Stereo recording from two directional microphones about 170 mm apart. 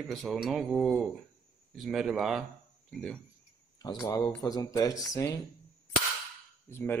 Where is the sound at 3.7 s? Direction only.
20° left (ahead or behind).